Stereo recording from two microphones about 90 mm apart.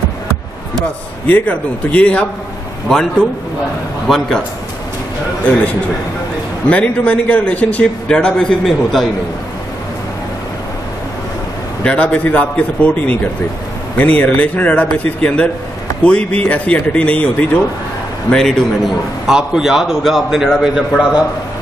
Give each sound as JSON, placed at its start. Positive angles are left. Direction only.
{"t": 1.2, "sound": "a man's voice", "side_deg": 15}
{"t": 6.7, "sound": "a man's voice", "side_deg": 15}
{"t": 11.8, "sound": "a man's voice", "side_deg": 15}
{"t": 19.2, "sound": "a man's voice", "side_deg": -5}